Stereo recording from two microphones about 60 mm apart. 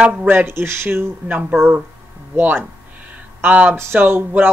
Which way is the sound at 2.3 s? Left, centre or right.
Right.